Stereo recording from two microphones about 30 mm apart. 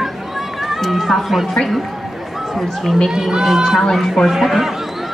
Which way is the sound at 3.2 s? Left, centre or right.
Centre.